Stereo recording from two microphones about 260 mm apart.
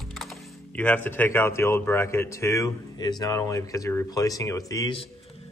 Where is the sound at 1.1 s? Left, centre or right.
Centre.